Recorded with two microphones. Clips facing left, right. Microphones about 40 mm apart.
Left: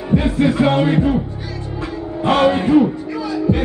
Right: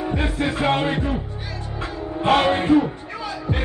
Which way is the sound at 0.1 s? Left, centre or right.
Right.